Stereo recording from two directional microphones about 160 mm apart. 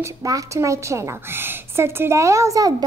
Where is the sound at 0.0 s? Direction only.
20° right (ahead or behind).